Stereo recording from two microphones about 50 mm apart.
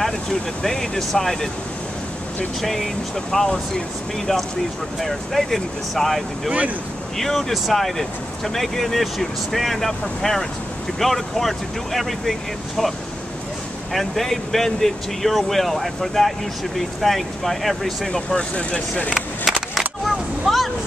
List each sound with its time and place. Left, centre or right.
0.0 s speech: centre
2.6 s speech: centre
5.0 s speech: centre
13.9 s speech: centre
18.5 s speech: left
19.1 s skateboard: centre
20.1 s a sound: centre